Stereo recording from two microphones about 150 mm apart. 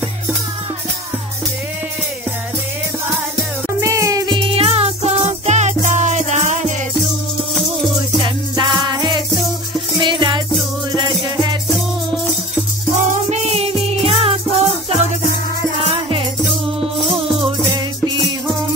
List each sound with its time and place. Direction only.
3.8 s music: 20° right (ahead or behind)
4.6 s music: 40° right (ahead or behind)
8.2 s music: 30° right (ahead or behind)
12.9 s music: 55° right (ahead or behind); by 16.3 s 40° right (ahead or behind)